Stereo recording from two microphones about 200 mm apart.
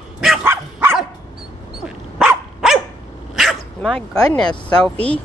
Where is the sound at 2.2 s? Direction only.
Centre (ahead or behind).